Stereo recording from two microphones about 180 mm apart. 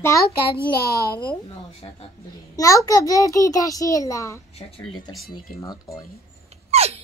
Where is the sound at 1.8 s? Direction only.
25° left (ahead or behind).